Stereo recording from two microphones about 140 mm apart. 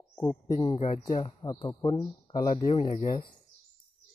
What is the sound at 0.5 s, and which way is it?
Speech, 25° left (ahead or behind).